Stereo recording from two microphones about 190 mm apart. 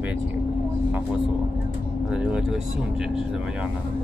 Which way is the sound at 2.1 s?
5° right (ahead or behind).